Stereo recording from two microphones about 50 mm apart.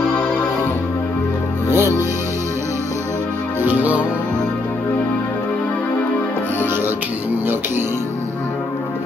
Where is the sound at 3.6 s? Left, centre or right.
Right.